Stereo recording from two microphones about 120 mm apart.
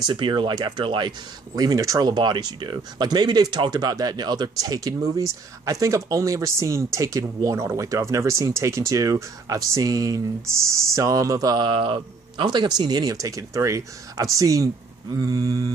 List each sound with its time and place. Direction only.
0.0 s speech: 40° right (ahead or behind)